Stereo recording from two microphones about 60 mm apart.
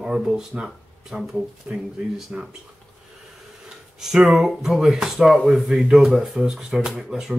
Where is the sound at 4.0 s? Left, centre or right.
Centre.